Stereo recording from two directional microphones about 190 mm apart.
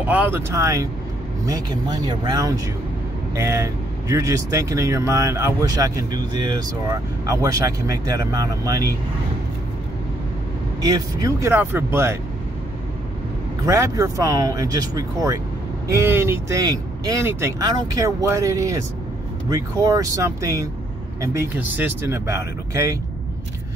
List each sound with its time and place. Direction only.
0.0 s speech: 10° right (ahead or behind)
10.8 s speech: 20° right (ahead or behind)
13.7 s speech: 15° right (ahead or behind)